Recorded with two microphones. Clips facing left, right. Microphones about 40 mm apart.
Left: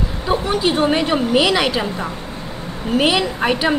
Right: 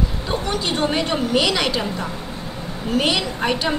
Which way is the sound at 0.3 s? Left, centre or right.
Centre.